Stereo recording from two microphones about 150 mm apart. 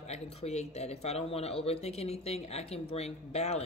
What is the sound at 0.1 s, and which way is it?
Speech, 45° left (ahead or behind).